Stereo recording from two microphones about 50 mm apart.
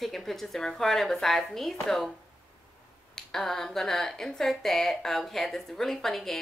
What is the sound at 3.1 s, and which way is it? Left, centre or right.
Speech, centre.